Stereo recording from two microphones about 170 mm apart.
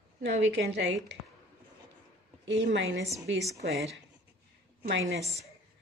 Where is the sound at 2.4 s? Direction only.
90° right.